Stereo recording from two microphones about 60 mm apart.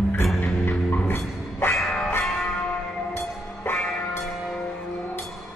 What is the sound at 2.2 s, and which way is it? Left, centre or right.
Church bell, centre.